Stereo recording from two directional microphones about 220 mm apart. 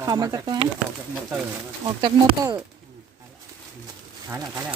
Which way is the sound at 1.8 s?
20° right (ahead or behind).